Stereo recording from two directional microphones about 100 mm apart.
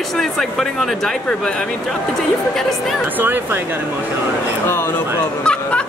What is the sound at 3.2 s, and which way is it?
Speech, 20° right (ahead or behind).